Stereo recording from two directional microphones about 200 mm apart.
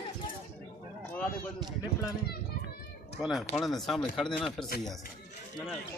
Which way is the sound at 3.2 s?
Centre (ahead or behind).